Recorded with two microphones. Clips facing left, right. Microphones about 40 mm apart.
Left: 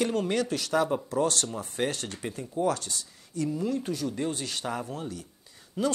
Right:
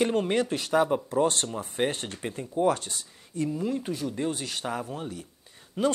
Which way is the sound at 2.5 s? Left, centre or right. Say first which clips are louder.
Right 3 dB; right.